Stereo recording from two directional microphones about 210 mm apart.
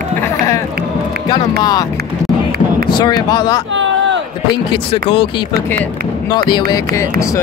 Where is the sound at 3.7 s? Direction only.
60° right (ahead or behind).